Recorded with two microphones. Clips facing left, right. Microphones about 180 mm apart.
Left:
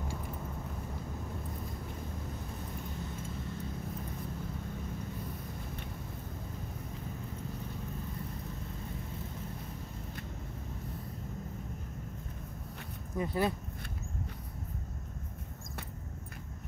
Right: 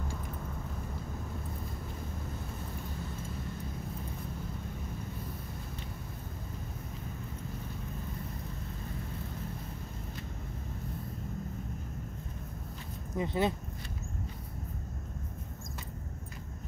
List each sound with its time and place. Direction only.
13.1 s speech: 20° right (ahead or behind)